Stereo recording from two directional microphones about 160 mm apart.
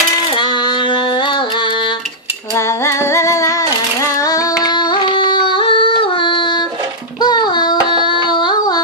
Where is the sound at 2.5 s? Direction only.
15° left (ahead or behind).